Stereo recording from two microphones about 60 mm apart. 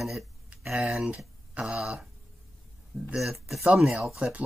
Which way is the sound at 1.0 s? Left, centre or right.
Centre.